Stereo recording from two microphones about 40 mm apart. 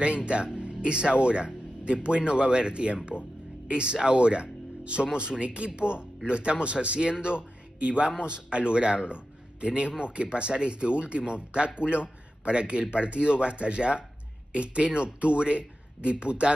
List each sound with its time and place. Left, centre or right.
0.0 s speech: right